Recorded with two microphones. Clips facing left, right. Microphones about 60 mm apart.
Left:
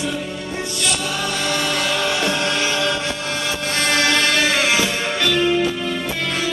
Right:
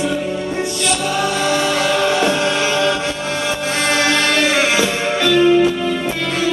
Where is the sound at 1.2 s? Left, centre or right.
Centre.